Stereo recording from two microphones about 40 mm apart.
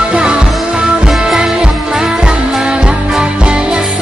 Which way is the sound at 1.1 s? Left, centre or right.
Centre.